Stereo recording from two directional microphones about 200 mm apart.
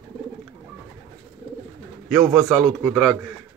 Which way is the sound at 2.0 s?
Centre (ahead or behind).